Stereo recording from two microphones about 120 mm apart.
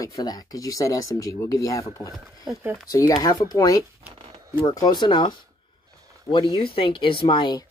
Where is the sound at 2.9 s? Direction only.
30° left (ahead or behind).